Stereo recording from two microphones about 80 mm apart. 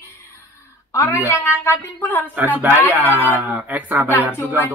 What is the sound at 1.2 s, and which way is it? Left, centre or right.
A woman's voice, left.